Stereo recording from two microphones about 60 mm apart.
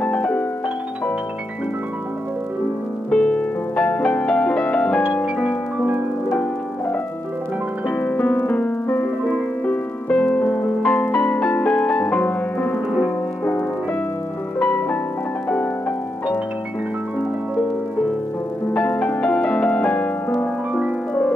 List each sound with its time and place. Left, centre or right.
0.0 s piano: left
3.1 s music: centre
8.0 s music: left
14.6 s music: left
18.7 s music: left